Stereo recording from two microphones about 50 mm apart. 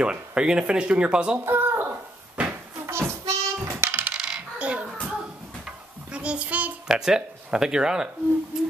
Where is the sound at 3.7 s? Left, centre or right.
Right.